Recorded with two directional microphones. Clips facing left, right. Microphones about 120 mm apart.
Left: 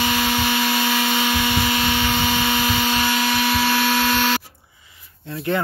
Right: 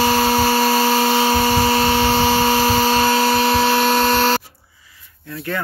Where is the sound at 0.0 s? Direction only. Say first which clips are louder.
Right 6 dB; 40° right (ahead or behind).